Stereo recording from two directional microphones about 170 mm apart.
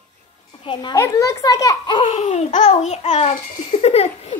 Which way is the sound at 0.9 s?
15° left (ahead or behind).